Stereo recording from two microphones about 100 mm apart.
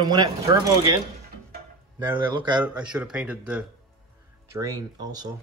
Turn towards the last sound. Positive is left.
turn(degrees=-40)  # may be behind; listen again after turning